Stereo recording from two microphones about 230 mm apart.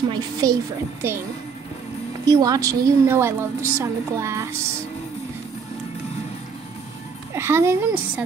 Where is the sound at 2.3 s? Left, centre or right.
Centre.